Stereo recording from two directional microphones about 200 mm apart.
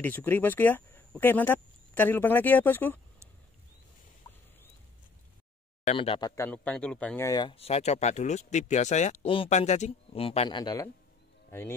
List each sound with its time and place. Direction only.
0.0 s speech: 10° left (ahead or behind)
5.9 s speech: 25° left (ahead or behind)